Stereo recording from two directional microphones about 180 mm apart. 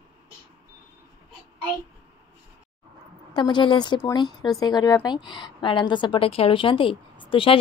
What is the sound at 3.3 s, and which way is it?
A woman's voice, 25° left (ahead or behind).